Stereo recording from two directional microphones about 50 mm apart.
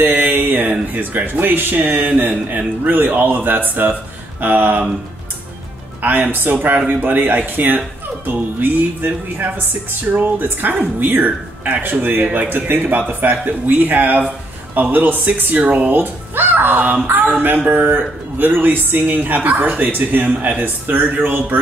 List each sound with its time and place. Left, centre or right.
0.0 s speech: right
6.0 s speech: right
15.9 s a child's voice: right